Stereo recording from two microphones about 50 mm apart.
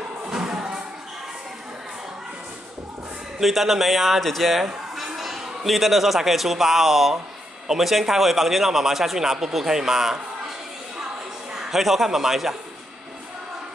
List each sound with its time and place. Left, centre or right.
0.3 s music: centre
3.3 s a man's voice: centre
11.5 s a man's voice: centre